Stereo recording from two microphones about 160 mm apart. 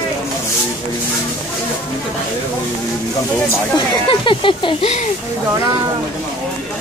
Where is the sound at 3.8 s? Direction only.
30° left (ahead or behind).